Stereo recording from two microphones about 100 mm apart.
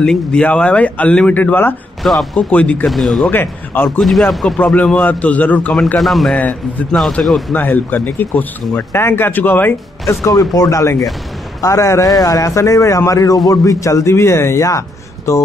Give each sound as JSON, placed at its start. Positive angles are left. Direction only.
{"t": 0.0, "sound": "speech", "side_deg": 10}
{"t": 2.0, "sound": "speech", "side_deg": 0}
{"t": 2.5, "sound": "speech", "side_deg": 10}
{"t": 2.9, "sound": "speech", "side_deg": 0}
{"t": 3.3, "sound": "speech", "side_deg": 20}
{"t": 4.0, "sound": "speech", "side_deg": 0}
{"t": 5.9, "sound": "speech", "side_deg": 0}
{"t": 7.5, "sound": "speech", "side_deg": 20}
{"t": 10.0, "sound": "a man's voice", "side_deg": 40}